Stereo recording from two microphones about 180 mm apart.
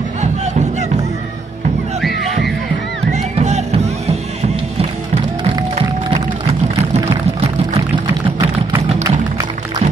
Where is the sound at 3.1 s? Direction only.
40° right (ahead or behind).